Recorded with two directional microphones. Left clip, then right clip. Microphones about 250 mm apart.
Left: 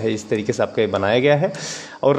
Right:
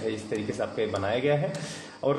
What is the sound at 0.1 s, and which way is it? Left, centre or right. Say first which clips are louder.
Speech: left 9 dB; left.